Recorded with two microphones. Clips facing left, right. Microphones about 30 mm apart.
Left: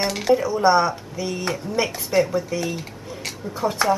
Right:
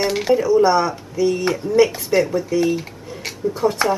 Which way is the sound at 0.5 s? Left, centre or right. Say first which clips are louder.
Right 3 dB; centre.